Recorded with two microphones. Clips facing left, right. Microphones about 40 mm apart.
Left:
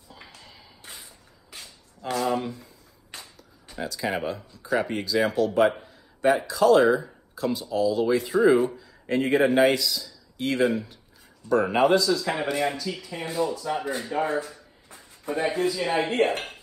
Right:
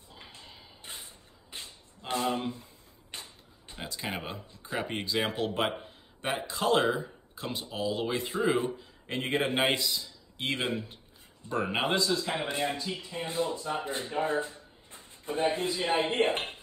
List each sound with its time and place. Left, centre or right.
0.1 s whip: right
6.2 s a man's voice: right
16.3 s music: right